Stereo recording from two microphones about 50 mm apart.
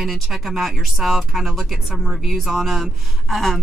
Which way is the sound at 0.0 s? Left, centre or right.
Centre.